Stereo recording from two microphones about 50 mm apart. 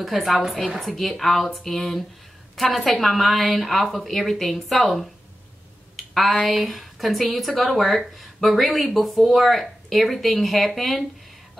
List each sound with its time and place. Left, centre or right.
0.0 s speech: centre
5.9 s a sound: centre
6.4 s speech: centre